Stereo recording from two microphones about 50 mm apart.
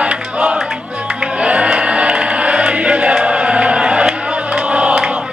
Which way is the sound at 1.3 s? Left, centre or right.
Right.